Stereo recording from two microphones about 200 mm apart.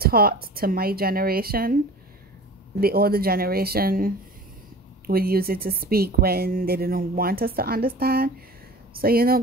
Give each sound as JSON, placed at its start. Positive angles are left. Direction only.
{"t": 0.0, "sound": "speech", "side_deg": -50}
{"t": 2.8, "sound": "speech", "side_deg": -50}